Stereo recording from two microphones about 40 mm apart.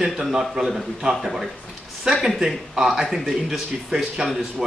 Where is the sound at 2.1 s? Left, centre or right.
Centre.